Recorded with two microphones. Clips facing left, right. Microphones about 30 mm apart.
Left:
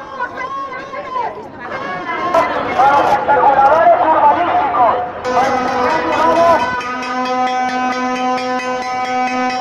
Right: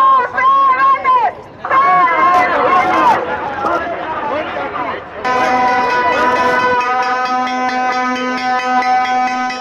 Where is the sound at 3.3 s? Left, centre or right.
Left.